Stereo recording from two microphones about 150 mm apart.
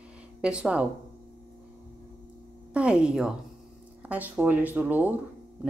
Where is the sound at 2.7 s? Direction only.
5° right (ahead or behind).